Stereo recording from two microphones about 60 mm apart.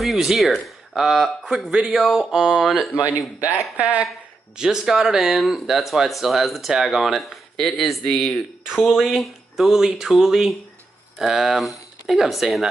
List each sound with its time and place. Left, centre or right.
0.0 s speech: centre
2.0 s speech: centre
3.3 s speech: right
4.6 s speech: centre